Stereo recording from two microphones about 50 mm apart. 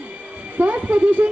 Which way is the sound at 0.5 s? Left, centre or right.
Right.